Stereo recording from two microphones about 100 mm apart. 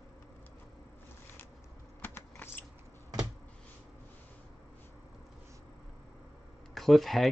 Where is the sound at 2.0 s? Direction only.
20° left (ahead or behind).